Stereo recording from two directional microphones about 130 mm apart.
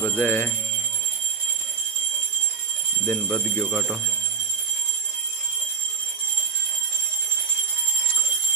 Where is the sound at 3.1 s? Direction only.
5° left (ahead or behind).